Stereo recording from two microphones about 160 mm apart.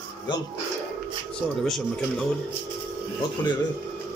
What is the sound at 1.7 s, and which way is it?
Speech, 5° left (ahead or behind).